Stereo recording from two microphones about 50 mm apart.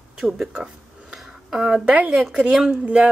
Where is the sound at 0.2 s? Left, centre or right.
Centre.